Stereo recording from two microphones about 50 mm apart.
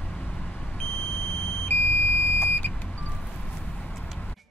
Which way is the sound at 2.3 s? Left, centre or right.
Left.